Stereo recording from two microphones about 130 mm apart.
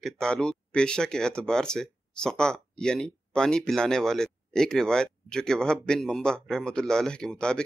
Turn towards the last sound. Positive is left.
turn(degrees=5)  # may be behind; listen again after turning